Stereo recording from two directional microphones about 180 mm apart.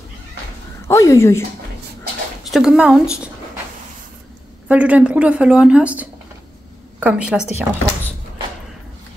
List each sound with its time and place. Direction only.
0.8 s speech: 15° left (ahead or behind)
2.5 s speech: 5° right (ahead or behind)
4.6 s a woman's voice: 5° right (ahead or behind)